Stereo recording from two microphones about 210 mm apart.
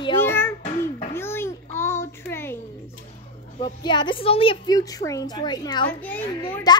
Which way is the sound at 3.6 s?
20° left (ahead or behind).